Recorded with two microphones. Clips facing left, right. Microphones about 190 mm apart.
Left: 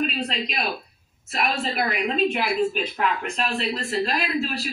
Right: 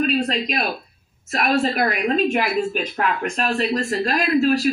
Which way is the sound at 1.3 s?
45° right (ahead or behind).